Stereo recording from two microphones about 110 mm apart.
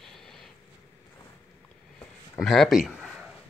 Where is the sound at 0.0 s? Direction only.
5° left (ahead or behind).